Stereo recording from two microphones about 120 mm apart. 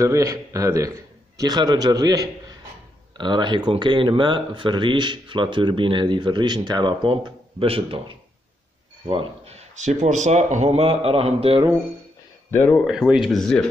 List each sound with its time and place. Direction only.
0.0 s a man's voice: 25° right (ahead or behind); by 11.6 s 55° right (ahead or behind)
12.4 s speech: 20° left (ahead or behind)
12.8 s speech: 5° right (ahead or behind)